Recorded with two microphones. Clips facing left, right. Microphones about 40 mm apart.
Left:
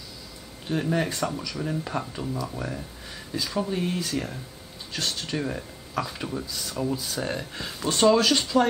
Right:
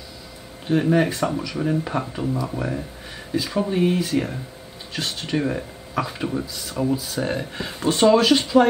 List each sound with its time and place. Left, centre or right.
0.7 s speech: centre